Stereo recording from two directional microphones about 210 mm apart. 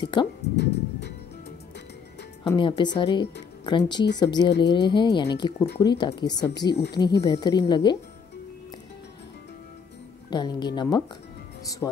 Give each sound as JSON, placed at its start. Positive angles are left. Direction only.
{"t": 0.0, "sound": "speech", "side_deg": 20}
{"t": 0.6, "sound": "music", "side_deg": 55}
{"t": 2.4, "sound": "speech", "side_deg": 20}
{"t": 6.7, "sound": "speech", "side_deg": 55}
{"t": 7.2, "sound": "speech", "side_deg": 20}
{"t": 10.3, "sound": "speech", "side_deg": 20}